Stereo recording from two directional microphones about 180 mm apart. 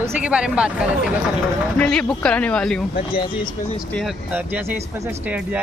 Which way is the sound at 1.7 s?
5° left (ahead or behind).